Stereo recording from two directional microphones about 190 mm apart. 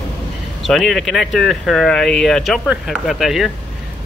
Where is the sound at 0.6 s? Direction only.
Centre (ahead or behind).